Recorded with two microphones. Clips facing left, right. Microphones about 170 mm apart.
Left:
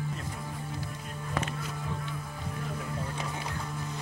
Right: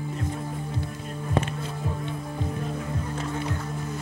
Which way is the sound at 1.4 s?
25° right (ahead or behind).